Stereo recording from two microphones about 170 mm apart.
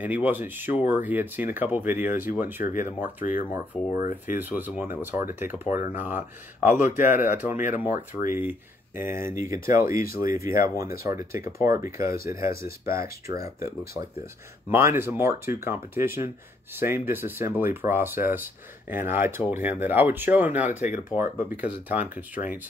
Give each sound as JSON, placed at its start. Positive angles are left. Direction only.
{"t": 0.0, "sound": "speech", "side_deg": -10}
{"t": 4.0, "sound": "speech", "side_deg": 45}
{"t": 4.4, "sound": "speech", "side_deg": -10}
{"t": 14.7, "sound": "speech", "side_deg": -15}